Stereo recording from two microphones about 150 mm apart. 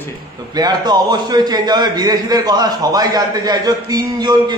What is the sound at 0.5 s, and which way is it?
A man's voice, 30° right (ahead or behind).